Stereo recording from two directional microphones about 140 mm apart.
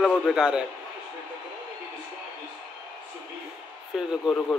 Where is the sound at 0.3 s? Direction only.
5° right (ahead or behind).